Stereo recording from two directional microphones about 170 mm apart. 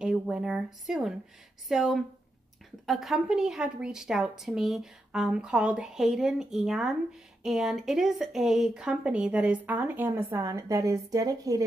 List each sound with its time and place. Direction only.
0.0 s a woman's voice: 5° right (ahead or behind); by 11.6 s 20° right (ahead or behind)